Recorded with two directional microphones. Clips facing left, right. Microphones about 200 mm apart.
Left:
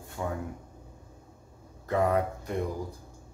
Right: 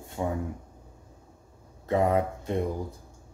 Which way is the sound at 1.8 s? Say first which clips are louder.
Right 2 dB; 25° right (ahead or behind).